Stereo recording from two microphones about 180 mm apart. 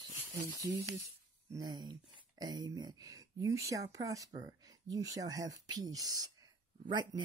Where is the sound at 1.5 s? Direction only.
25° right (ahead or behind).